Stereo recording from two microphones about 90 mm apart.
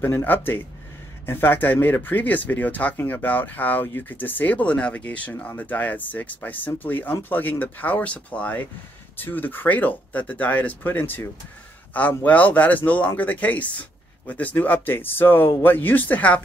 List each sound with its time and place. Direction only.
0.0 s a man's voice: 25° left (ahead or behind)